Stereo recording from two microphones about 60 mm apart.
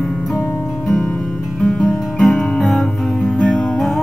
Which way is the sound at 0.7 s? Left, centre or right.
Centre.